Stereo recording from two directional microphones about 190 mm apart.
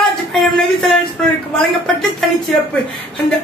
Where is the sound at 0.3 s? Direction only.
Centre (ahead or behind).